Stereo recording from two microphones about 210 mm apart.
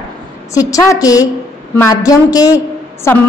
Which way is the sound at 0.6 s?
15° left (ahead or behind).